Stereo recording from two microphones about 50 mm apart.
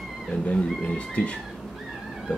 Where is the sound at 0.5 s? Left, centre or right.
Left.